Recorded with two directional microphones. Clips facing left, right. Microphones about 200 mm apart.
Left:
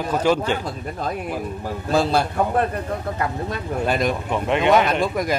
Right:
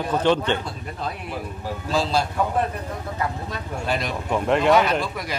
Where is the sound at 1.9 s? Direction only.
60° left (ahead or behind).